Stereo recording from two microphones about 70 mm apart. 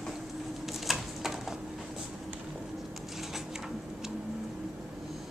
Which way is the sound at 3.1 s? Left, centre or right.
Centre.